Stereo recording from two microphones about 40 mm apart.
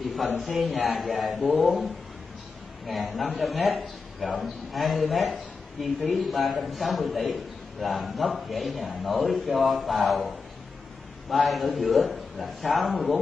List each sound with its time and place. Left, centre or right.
0.4 s a man's voice: centre
2.9 s a man's voice: centre